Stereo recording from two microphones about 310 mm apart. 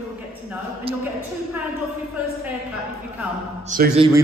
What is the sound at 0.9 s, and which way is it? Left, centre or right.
Speech, centre.